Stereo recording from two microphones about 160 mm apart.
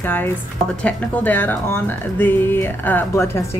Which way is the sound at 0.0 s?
10° left (ahead or behind).